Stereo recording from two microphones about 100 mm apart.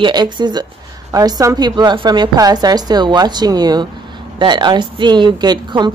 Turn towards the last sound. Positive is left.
turn(degrees=-50)  # may be behind; listen again after turning